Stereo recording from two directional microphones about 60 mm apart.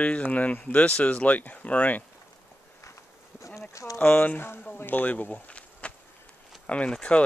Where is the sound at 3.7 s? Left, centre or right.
Left.